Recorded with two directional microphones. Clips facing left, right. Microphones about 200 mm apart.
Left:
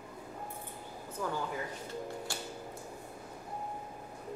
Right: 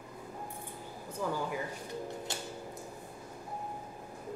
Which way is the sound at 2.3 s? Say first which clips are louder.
Right 1 dB; 20° right (ahead or behind).